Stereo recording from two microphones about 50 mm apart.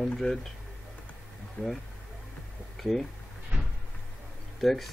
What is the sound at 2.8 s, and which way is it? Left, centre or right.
Speech, centre.